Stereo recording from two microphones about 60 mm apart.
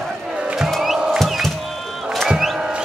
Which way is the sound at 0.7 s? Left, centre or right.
Centre.